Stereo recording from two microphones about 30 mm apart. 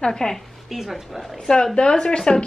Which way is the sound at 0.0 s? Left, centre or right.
Left.